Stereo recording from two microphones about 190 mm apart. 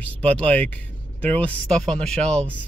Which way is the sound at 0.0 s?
5° left (ahead or behind).